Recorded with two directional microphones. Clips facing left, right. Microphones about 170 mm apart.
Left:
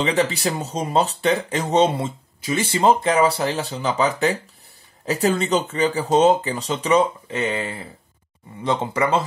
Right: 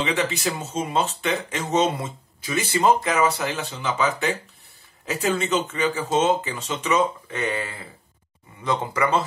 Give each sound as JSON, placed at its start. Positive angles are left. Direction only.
{"t": 0.0, "sound": "speech", "side_deg": 35}
{"t": 7.3, "sound": "speech", "side_deg": 20}